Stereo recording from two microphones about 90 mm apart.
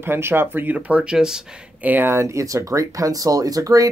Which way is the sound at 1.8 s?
20° right (ahead or behind).